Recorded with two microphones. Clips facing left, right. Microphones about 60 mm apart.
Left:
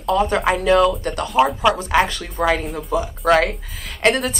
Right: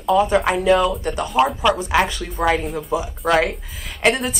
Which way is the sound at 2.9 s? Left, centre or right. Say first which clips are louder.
Left 2 dB; centre.